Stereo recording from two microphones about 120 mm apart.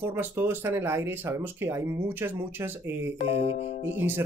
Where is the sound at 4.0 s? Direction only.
20° right (ahead or behind).